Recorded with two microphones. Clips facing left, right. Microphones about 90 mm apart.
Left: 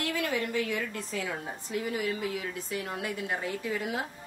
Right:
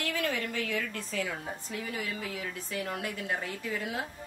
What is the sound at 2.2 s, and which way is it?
Speech, 20° left (ahead or behind).